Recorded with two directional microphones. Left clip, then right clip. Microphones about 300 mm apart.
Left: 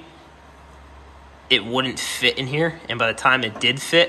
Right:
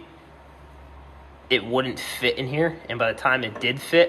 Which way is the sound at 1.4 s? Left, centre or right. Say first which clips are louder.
Left 3 dB; centre.